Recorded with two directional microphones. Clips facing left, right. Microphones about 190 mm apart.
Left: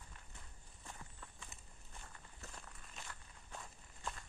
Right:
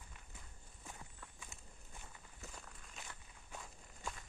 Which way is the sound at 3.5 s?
Centre (ahead or behind).